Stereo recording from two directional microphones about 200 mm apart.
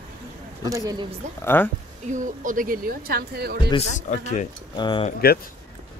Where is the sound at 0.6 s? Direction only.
15° right (ahead or behind).